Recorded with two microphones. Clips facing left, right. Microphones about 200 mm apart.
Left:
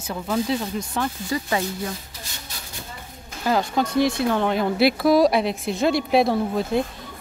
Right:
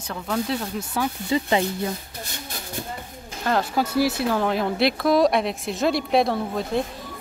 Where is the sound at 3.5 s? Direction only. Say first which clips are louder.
Left 1 dB; 5° right (ahead or behind).